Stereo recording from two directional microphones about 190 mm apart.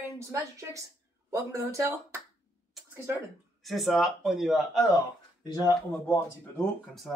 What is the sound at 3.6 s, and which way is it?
A man's voice, centre (ahead or behind).